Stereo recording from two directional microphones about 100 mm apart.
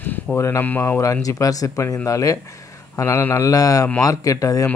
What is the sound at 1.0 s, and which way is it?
Speech, 30° left (ahead or behind).